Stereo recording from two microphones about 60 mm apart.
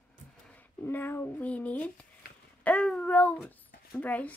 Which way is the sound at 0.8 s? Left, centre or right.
Left.